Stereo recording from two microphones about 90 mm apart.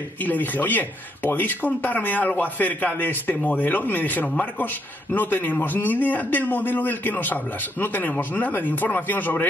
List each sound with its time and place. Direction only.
0.2 s speech: 20° left (ahead or behind)